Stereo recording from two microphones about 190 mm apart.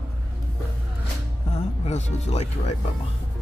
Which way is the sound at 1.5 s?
35° left (ahead or behind).